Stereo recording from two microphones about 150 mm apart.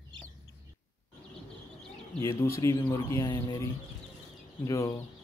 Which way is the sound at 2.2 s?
20° left (ahead or behind).